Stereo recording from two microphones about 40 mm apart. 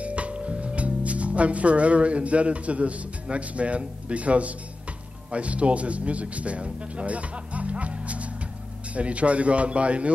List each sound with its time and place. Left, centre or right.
0.0 s a man's voice: right